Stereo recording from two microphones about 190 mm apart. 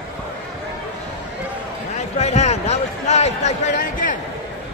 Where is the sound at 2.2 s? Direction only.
35° left (ahead or behind).